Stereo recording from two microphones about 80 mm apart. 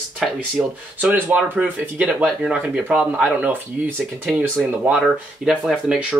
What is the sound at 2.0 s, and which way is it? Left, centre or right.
Speech, centre.